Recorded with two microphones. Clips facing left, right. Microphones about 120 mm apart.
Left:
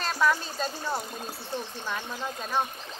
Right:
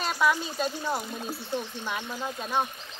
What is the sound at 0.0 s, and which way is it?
Speech, 10° right (ahead or behind).